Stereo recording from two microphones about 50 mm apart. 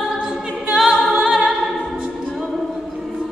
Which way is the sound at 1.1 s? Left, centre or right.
Right.